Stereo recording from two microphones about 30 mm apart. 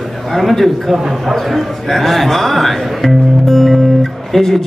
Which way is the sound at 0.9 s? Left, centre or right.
Centre.